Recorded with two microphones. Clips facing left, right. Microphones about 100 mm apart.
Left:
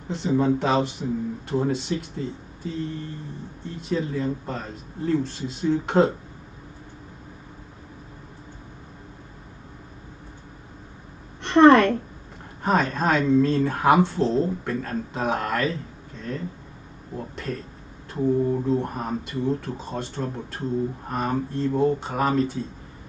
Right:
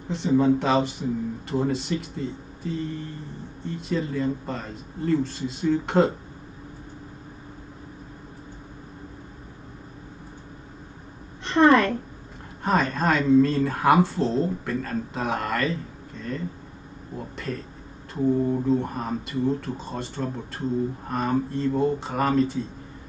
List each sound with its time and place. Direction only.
0.1 s speech: centre (ahead or behind)
11.4 s a sound: 65° left (ahead or behind)
12.6 s speech: centre (ahead or behind)